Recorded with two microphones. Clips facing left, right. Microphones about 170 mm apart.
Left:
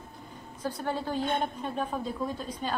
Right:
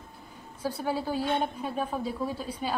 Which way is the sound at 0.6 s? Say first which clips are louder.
Right 2 dB; 10° right (ahead or behind).